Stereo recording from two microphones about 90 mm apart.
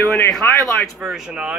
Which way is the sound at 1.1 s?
10° right (ahead or behind).